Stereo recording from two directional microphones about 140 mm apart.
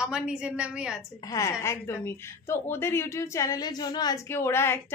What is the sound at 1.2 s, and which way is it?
A woman's voice, 20° left (ahead or behind).